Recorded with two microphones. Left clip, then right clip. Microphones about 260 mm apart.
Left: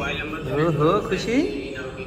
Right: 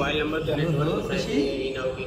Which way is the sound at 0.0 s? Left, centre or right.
Right.